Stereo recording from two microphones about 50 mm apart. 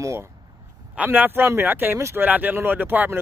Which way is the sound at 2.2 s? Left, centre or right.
Right.